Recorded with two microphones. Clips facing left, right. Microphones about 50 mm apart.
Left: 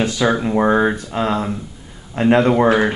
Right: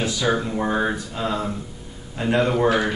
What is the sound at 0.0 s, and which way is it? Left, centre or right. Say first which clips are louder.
Speech: left 5 dB; left.